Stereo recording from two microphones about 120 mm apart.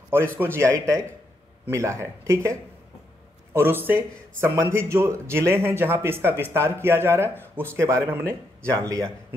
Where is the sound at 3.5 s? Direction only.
15° right (ahead or behind).